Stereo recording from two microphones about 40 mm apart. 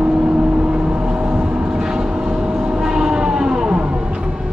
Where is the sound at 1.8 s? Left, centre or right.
Centre.